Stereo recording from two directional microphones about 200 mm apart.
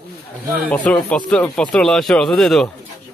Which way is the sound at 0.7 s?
5° left (ahead or behind).